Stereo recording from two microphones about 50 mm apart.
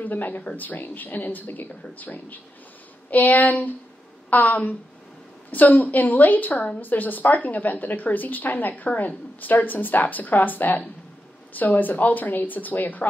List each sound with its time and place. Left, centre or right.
0.0 s a woman's voice: left